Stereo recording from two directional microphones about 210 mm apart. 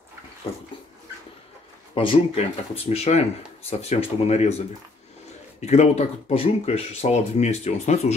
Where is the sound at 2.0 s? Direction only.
25° left (ahead or behind).